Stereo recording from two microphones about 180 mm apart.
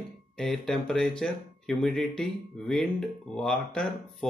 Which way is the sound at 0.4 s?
5° left (ahead or behind).